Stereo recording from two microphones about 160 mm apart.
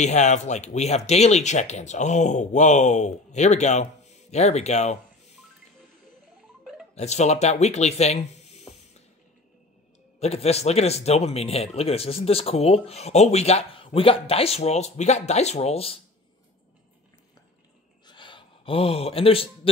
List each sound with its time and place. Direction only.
0.0 s speech: 45° left (ahead or behind)
7.0 s speech: 45° left (ahead or behind)
10.2 s speech: 40° left (ahead or behind)
18.0 s a sound: 30° left (ahead or behind)